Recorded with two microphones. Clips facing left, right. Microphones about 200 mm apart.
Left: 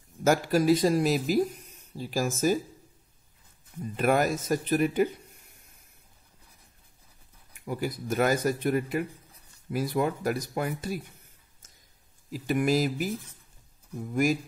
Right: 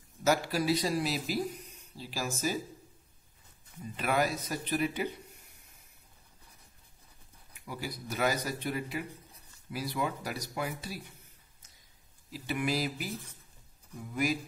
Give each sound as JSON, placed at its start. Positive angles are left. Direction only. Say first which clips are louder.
{"t": 0.2, "sound": "speech", "louder": "left 5 dB", "side_deg": 45}
{"t": 3.9, "sound": "speech", "louder": "left 6 dB", "side_deg": 50}
{"t": 7.6, "sound": "speech", "louder": "left 8 dB", "side_deg": 50}
{"t": 12.3, "sound": "speech", "louder": "left 7 dB", "side_deg": 45}
{"t": 14.1, "sound": "speech", "louder": "left 6 dB", "side_deg": 45}